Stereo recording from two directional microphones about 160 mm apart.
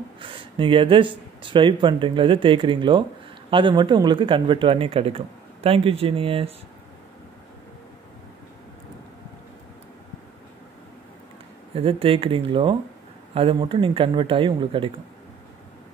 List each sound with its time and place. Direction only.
0.2 s speech: 35° right (ahead or behind)
11.7 s speech: 35° right (ahead or behind)